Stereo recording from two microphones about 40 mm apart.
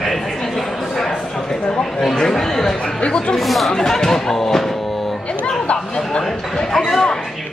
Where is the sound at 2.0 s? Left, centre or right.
Centre.